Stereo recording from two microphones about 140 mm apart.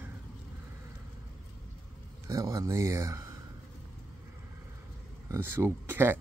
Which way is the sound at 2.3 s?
25° right (ahead or behind).